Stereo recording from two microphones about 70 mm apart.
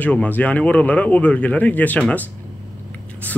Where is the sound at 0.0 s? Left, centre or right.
Left.